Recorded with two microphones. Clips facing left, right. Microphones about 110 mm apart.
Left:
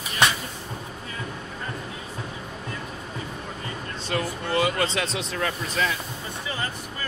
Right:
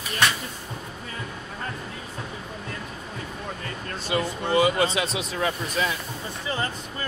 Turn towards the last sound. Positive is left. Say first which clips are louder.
# right 1 dB
turn(degrees=-20)  # may be behind; listen again after turning